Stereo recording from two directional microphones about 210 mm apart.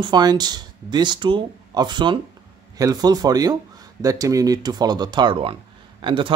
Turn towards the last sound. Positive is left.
turn(degrees=-25)  # may be behind; listen again after turning